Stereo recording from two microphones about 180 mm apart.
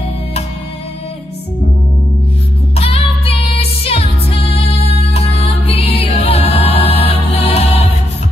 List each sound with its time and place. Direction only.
2.7 s music: 35° left (ahead or behind)